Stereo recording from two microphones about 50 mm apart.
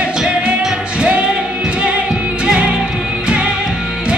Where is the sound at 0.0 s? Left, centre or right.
Centre.